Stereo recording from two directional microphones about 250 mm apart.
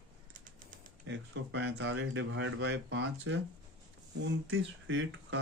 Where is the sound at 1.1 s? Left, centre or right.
Right.